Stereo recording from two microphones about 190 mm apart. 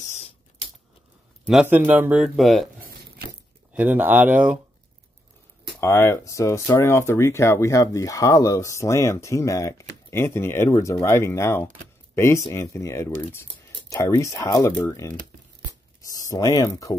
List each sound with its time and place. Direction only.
1.5 s speech: 10° right (ahead or behind)
3.7 s speech: 10° right (ahead or behind)
5.8 s speech: 15° left (ahead or behind)